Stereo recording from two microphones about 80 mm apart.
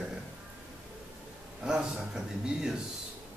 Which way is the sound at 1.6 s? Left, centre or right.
Centre.